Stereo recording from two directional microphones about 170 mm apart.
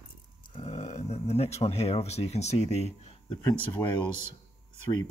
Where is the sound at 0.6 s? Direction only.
40° left (ahead or behind).